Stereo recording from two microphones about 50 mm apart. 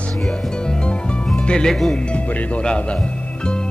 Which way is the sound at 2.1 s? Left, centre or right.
Left.